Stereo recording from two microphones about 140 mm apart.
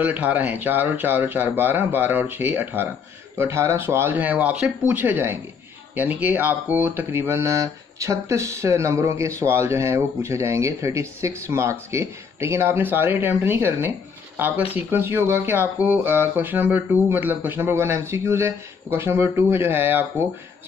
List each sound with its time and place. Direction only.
0.0 s speech: 10° right (ahead or behind)